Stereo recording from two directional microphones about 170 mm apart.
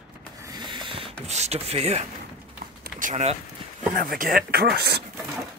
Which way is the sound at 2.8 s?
50° right (ahead or behind).